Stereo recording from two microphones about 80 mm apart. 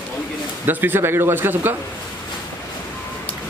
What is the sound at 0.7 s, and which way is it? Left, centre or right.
A man's voice, right.